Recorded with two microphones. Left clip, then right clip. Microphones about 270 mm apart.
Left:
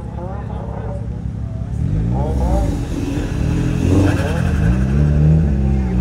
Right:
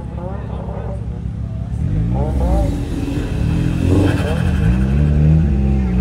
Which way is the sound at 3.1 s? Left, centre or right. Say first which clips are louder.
Even; centre.